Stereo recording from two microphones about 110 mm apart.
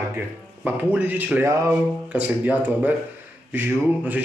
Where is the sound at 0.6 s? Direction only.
15° right (ahead or behind).